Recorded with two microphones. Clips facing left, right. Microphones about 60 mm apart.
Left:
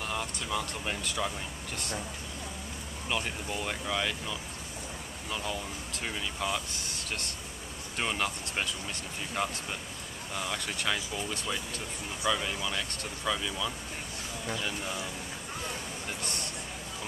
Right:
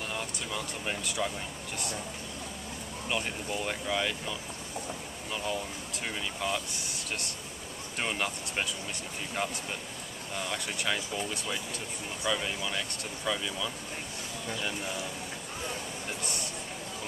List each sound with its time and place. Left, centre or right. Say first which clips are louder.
0.1 s speech: left 2 dB; centre
3.1 s speech: even; centre
10.5 s speech: even; centre